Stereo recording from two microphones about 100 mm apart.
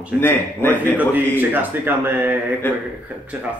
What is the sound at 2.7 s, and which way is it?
Speech, 20° left (ahead or behind).